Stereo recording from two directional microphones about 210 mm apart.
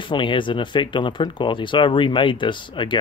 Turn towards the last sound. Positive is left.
turn(degrees=20)  # may be behind; listen again after turning